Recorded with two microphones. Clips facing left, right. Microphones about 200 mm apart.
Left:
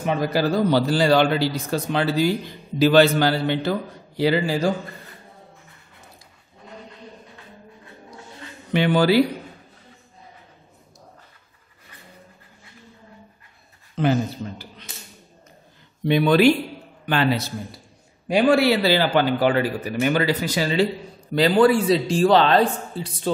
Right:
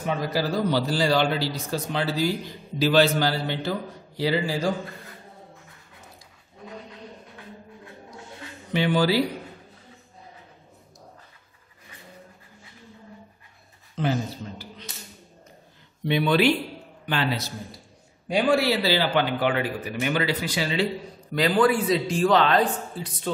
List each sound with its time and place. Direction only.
0.0 s a man's voice: 60° left (ahead or behind)
8.7 s a man's voice: 60° left (ahead or behind)
16.1 s a man's voice: 45° left (ahead or behind)
17.0 s a man's voice: 55° left (ahead or behind)
21.4 s a man's voice: 30° left (ahead or behind)